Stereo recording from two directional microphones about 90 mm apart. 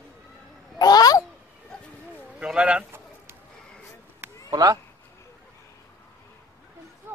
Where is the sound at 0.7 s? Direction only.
50° left (ahead or behind).